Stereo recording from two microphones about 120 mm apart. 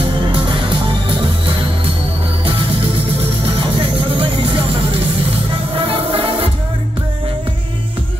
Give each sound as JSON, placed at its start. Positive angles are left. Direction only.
{"t": 0.3, "sound": "music", "side_deg": -45}
{"t": 3.4, "sound": "music", "side_deg": -45}
{"t": 5.8, "sound": "music", "side_deg": -50}